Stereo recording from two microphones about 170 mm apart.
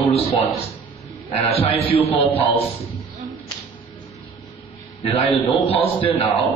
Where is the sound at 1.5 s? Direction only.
35° left (ahead or behind).